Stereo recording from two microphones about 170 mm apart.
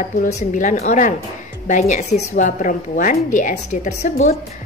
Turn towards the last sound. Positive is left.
turn(degrees=45)  # may be behind; listen again after turning